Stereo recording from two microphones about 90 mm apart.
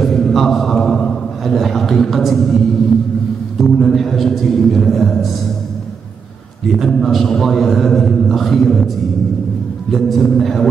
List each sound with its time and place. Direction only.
0.0 s a sound: 5° left (ahead or behind)
3.5 s a man's voice: centre (ahead or behind)
6.7 s a man's voice: 5° left (ahead or behind)
9.9 s a man's voice: centre (ahead or behind)